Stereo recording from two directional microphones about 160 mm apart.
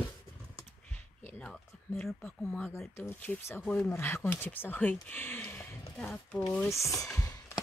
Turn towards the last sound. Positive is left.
turn(degrees=20)  # may be behind; listen again after turning